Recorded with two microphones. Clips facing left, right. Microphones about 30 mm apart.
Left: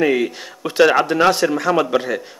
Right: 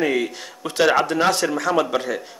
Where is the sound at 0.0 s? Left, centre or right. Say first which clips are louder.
Left 4 dB; centre.